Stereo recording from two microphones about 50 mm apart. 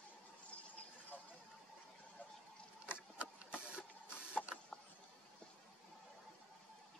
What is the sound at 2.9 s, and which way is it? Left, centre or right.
Printer, right.